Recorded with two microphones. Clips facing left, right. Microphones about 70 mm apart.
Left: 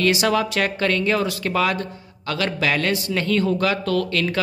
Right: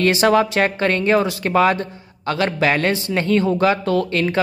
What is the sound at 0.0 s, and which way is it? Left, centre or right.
Speech, right.